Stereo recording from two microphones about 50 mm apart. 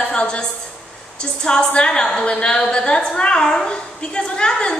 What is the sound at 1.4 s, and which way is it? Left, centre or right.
A woman's voice, centre.